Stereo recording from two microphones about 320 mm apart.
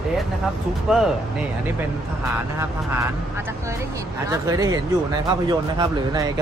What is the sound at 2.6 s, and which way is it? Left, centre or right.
Speech, centre.